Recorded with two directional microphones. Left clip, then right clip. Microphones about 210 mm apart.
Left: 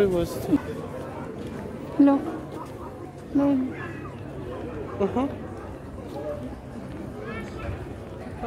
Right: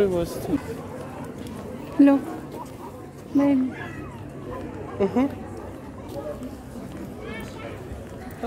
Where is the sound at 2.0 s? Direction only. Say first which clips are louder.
Right 2 dB; 10° right (ahead or behind).